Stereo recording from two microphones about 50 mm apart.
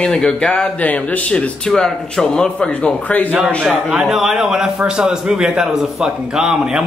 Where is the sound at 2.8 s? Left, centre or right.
Left.